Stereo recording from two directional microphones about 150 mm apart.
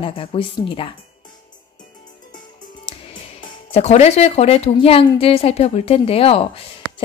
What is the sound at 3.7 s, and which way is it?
Speech, 45° left (ahead or behind).